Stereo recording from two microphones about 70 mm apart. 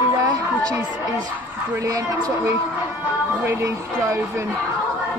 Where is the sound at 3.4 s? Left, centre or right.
Right.